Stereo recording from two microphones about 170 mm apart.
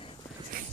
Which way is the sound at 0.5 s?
50° right (ahead or behind).